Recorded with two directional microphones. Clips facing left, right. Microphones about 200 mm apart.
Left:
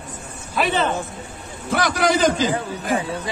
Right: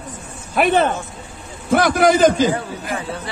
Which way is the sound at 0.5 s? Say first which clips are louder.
Right 5 dB; 55° right (ahead or behind).